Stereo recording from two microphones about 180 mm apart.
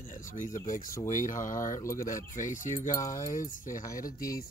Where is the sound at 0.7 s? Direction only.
50° left (ahead or behind).